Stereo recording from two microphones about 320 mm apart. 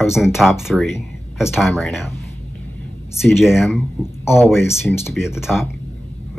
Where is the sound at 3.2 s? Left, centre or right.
Centre.